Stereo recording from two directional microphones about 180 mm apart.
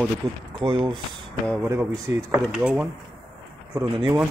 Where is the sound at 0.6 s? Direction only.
25° right (ahead or behind).